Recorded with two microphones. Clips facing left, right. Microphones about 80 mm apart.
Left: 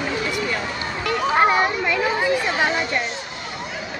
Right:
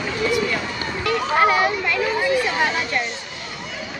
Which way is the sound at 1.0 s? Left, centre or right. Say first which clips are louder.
Even; left.